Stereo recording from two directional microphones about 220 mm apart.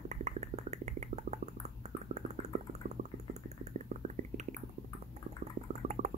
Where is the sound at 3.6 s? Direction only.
30° right (ahead or behind).